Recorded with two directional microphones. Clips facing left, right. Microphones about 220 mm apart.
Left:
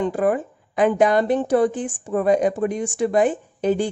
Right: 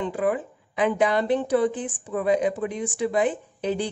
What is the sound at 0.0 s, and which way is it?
A woman's voice, 45° left (ahead or behind).